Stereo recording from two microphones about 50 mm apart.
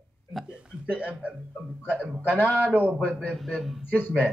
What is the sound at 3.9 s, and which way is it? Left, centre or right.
Speech, left.